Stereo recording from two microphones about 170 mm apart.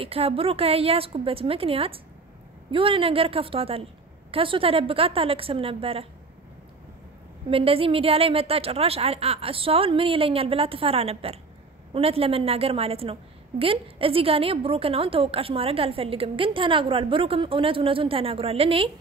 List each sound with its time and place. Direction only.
0.0 s a woman's voice: 35° right (ahead or behind)
7.4 s a woman's voice: 35° right (ahead or behind)